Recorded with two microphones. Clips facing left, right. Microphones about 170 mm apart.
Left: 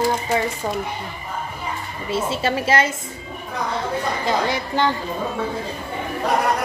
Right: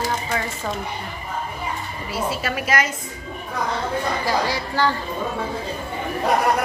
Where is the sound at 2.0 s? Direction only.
25° left (ahead or behind).